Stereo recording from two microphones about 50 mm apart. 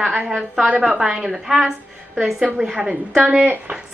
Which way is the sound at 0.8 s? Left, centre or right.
Centre.